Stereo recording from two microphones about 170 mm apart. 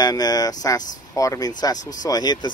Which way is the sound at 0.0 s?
20° left (ahead or behind).